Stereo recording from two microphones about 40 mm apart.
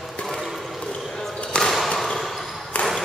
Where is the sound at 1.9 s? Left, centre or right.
Centre.